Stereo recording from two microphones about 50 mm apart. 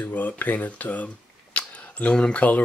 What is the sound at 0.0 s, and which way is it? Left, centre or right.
Speech, left.